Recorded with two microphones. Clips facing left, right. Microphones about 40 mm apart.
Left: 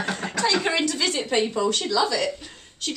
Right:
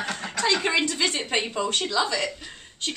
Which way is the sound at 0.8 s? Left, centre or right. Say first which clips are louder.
Left 1 dB; right.